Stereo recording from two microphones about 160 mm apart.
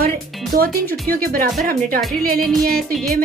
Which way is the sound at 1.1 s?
65° right (ahead or behind).